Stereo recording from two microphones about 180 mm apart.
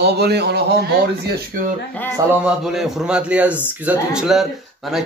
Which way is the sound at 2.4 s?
Centre (ahead or behind).